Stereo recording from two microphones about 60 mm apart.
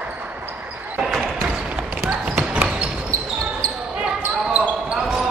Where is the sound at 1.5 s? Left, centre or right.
Centre.